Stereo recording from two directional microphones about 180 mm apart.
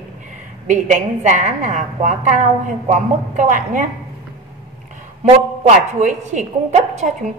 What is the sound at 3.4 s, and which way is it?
Speech, 45° right (ahead or behind).